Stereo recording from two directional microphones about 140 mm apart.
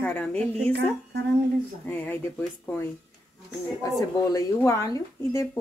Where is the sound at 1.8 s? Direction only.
10° left (ahead or behind).